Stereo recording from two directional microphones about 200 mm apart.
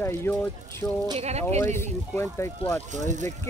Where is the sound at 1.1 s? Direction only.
35° right (ahead or behind).